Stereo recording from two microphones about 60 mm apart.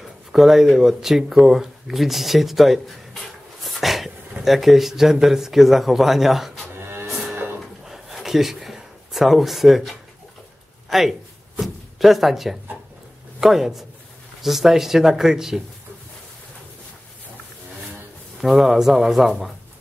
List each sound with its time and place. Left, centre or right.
0.0 s speech: centre
3.6 s dog: centre
4.5 s speech: centre
6.9 s music: right
7.8 s a sound: centre
10.9 s speech: centre
18.4 s speech: centre